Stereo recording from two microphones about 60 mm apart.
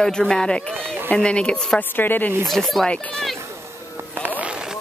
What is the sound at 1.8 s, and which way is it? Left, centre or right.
Speech, left.